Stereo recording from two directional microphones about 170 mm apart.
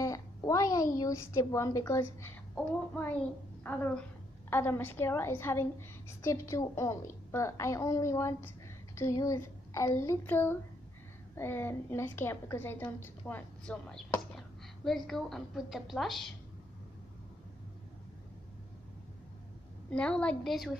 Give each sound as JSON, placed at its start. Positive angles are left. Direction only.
{"t": 0.0, "sound": "a woman's voice", "side_deg": 20}
{"t": 19.9, "sound": "a woman's voice", "side_deg": 5}